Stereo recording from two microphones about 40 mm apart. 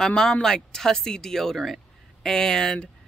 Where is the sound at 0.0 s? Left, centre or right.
Centre.